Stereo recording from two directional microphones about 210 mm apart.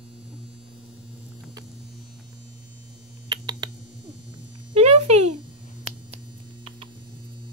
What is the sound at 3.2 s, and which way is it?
Typing, 20° right (ahead or behind).